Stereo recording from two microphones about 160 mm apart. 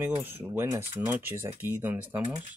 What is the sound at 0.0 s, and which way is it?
Speech, 15° right (ahead or behind).